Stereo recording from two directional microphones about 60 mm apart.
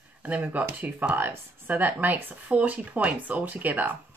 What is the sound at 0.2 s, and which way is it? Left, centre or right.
Speech, right.